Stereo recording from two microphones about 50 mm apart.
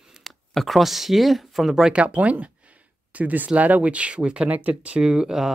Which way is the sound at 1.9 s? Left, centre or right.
Right.